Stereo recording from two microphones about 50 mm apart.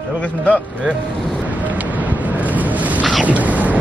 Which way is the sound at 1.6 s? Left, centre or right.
Right.